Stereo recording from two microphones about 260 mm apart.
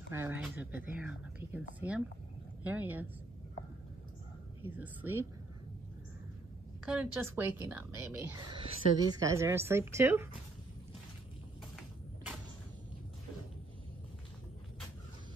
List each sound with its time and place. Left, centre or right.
0.1 s speech: centre
4.6 s speech: centre
6.9 s speech: centre